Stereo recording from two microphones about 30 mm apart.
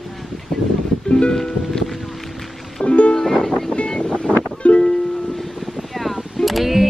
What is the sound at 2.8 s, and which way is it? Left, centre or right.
Music, left.